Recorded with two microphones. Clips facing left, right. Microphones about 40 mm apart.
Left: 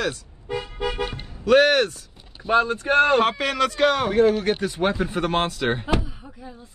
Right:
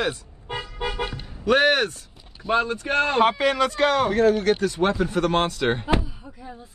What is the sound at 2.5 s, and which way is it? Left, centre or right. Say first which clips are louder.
Speech: left 3 dB; left.